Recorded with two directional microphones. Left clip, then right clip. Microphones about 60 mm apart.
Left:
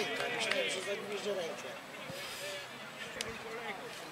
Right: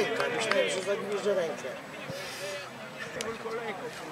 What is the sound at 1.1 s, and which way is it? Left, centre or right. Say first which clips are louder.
Speech: right 8 dB; right.